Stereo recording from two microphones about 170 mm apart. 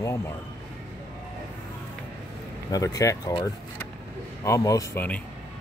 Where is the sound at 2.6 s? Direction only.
20° left (ahead or behind).